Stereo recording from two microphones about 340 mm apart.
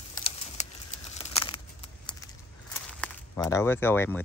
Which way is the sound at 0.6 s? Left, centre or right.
Centre.